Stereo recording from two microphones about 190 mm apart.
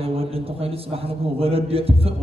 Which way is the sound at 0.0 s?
30° right (ahead or behind).